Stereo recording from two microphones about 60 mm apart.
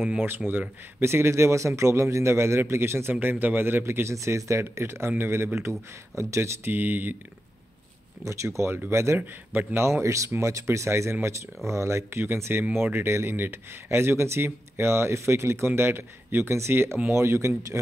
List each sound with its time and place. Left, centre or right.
0.5 s speech: right
1.0 s speech: right
5.6 s speech: right
6.6 s speech: right
8.2 s speech: right
9.2 s a man's voice: right
9.8 s speech: right